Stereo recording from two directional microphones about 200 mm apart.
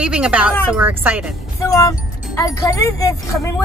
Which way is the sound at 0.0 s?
5° right (ahead or behind).